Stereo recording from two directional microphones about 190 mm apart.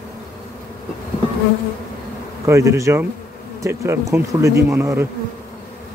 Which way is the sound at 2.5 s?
15° right (ahead or behind).